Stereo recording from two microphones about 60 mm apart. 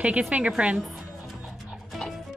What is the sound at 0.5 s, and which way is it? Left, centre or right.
Speech, centre.